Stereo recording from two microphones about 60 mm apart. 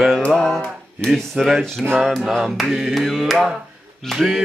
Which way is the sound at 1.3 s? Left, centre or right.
Centre.